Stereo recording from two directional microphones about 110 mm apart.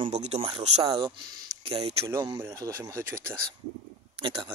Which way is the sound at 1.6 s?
65° right (ahead or behind).